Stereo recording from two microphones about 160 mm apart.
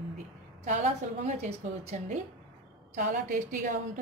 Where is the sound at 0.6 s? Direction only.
50° right (ahead or behind).